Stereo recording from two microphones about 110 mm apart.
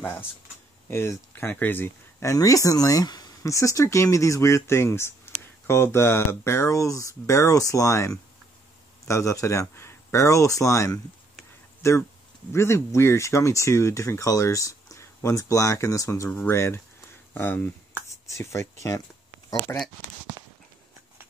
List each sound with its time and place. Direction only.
0.0 s speech: 15° left (ahead or behind)
16.3 s speech: 20° left (ahead or behind)